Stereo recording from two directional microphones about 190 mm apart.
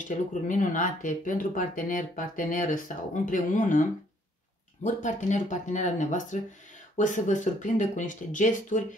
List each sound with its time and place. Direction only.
0.0 s speech: 40° left (ahead or behind)
4.8 s speech: 40° left (ahead or behind)